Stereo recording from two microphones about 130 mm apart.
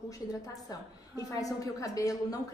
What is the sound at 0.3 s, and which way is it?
A woman's voice, 25° left (ahead or behind).